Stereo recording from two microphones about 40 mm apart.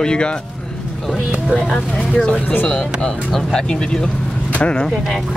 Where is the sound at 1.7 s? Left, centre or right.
Left.